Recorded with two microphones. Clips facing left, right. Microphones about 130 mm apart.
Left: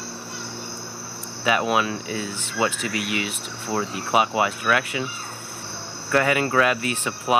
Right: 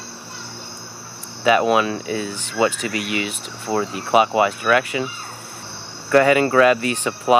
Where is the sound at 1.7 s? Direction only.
5° left (ahead or behind).